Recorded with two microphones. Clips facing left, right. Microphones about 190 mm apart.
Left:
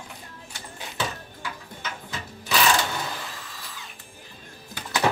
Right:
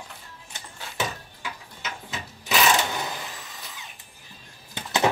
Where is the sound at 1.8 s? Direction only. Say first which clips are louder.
Right 2 dB; 20° right (ahead or behind).